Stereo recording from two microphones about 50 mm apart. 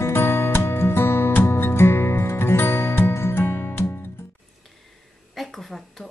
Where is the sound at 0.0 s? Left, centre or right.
Left.